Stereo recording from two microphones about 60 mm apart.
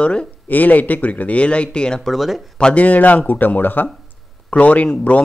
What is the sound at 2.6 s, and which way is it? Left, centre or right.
Speech, left.